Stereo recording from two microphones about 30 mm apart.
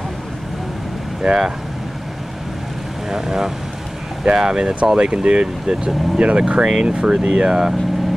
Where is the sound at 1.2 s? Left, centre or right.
Centre.